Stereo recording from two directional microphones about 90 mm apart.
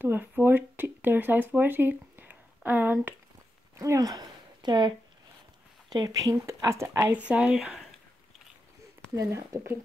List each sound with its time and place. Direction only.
0.0 s speech: 25° right (ahead or behind)
3.7 s speech: 35° right (ahead or behind)
7.2 s speech: 15° right (ahead or behind)
9.1 s speech: 35° right (ahead or behind)